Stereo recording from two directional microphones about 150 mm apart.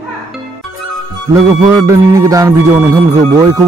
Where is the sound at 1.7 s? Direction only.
20° right (ahead or behind).